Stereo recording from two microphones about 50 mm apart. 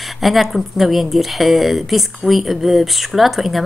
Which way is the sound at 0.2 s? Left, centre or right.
Centre.